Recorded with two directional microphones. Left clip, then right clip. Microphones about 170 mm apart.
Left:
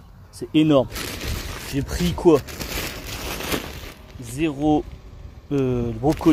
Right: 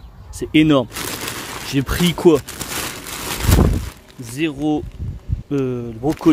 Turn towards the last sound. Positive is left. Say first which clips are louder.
# even
turn(degrees=-5)  # may be behind; listen again after turning